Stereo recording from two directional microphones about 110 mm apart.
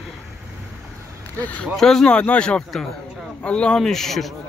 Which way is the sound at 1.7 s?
5° left (ahead or behind).